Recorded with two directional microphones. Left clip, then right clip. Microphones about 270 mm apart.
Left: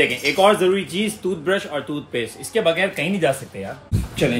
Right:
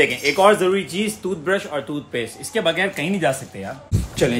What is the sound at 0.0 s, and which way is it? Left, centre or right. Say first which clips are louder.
A man's voice: right 1 dB; centre.